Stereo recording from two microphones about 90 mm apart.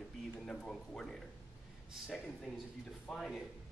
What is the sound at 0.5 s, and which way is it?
Speech, 10° left (ahead or behind).